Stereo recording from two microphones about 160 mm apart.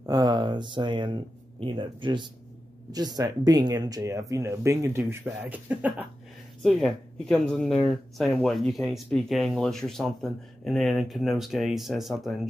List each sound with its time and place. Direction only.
0.0 s speech: 25° right (ahead or behind)
6.6 s speech: centre (ahead or behind)